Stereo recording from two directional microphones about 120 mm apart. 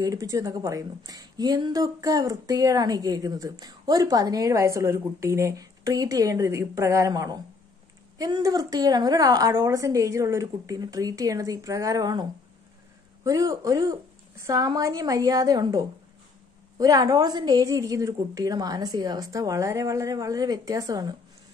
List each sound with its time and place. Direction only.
0.0 s a woman's voice: 30° right (ahead or behind)